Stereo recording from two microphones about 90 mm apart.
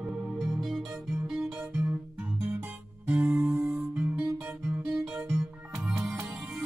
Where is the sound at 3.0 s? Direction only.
20° right (ahead or behind).